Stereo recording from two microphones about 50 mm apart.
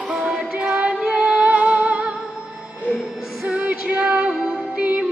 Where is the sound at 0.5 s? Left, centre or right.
Right.